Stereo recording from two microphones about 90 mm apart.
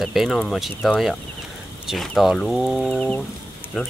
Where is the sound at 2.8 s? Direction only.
10° left (ahead or behind).